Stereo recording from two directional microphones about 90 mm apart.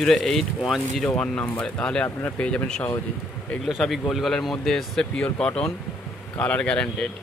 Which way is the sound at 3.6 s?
Centre (ahead or behind).